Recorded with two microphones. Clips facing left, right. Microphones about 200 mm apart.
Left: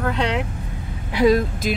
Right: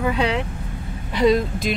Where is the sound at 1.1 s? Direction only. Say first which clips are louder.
Left 1 dB; 5° left (ahead or behind).